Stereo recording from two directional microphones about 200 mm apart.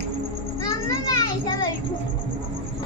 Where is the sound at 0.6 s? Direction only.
15° left (ahead or behind).